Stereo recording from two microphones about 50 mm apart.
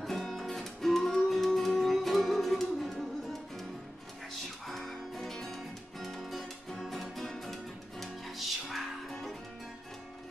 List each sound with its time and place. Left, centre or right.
0.0 s music: centre
4.6 s music: centre